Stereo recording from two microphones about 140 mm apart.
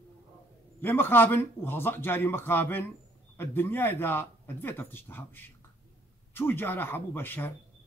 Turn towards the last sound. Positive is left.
turn(degrees=15)  # may be behind; listen again after turning